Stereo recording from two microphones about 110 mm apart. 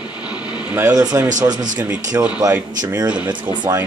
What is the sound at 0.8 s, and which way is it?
Speech, 35° right (ahead or behind).